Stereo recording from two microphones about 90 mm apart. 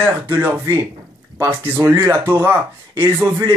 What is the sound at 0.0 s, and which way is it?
Speech, 20° right (ahead or behind).